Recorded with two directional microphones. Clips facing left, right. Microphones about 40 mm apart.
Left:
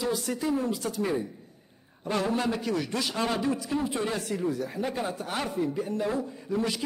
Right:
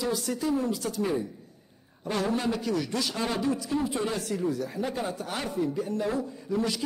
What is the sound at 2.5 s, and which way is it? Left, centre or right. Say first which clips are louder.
A man's voice: even; left.